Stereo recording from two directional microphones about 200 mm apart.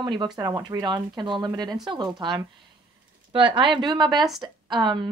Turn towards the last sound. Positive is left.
turn(degrees=-20)  # may be behind; listen again after turning